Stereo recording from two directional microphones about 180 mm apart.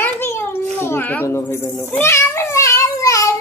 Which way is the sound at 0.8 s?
10° left (ahead or behind).